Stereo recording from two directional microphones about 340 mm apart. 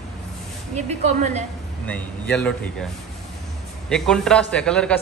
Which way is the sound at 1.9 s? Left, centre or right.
Centre.